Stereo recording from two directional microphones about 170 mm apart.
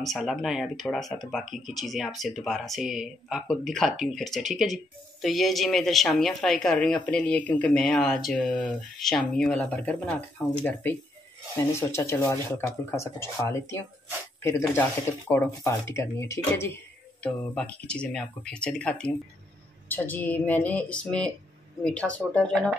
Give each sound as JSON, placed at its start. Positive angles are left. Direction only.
{"t": 0.0, "sound": "speech", "side_deg": 0}